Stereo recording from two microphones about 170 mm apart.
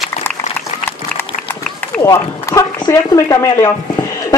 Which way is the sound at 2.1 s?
15° left (ahead or behind).